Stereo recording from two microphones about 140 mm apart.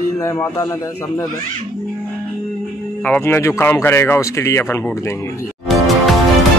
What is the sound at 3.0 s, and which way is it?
Speech, 15° left (ahead or behind).